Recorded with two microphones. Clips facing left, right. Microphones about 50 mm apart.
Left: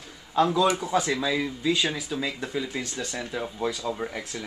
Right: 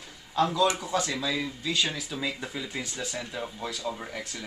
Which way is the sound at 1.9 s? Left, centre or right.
Centre.